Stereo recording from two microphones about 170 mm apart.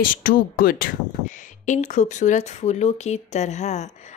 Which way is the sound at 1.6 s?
45° left (ahead or behind).